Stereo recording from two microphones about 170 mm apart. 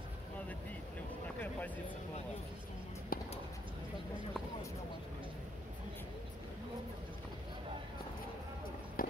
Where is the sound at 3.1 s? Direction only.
55° left (ahead or behind).